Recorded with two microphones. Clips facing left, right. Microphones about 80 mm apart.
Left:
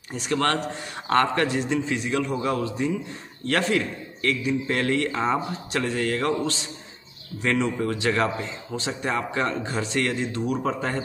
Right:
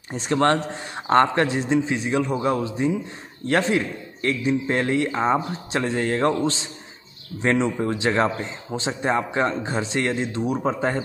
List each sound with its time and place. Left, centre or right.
0.1 s speech: right